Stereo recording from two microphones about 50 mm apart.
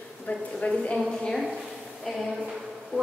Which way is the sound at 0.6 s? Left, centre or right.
Left.